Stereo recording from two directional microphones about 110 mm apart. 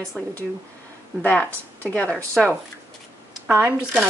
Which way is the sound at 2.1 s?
Centre (ahead or behind).